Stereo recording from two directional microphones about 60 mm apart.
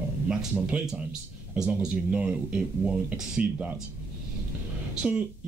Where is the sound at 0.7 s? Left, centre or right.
Centre.